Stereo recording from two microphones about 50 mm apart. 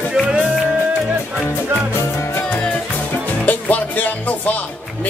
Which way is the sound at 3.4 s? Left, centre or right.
Left.